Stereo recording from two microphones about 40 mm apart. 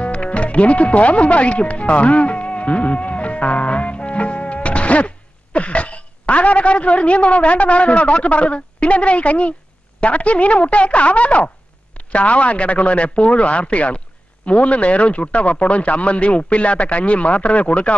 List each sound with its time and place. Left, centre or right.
0.0 s speech: left